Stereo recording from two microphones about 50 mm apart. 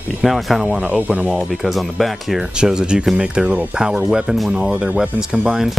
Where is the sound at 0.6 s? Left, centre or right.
Right.